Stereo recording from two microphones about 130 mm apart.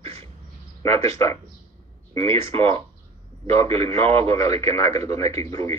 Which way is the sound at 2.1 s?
45° right (ahead or behind).